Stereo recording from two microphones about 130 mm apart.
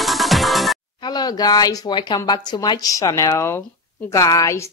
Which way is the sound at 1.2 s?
30° left (ahead or behind).